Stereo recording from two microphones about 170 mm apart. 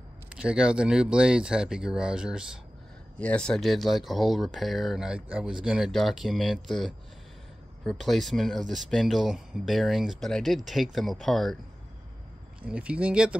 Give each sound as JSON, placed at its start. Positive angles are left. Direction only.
{"t": 0.3, "sound": "speech", "side_deg": -5}
{"t": 3.2, "sound": "speech", "side_deg": 5}
{"t": 12.6, "sound": "speech", "side_deg": -5}